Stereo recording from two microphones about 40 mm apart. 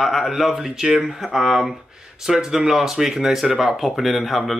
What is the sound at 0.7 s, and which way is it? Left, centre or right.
Speech, right.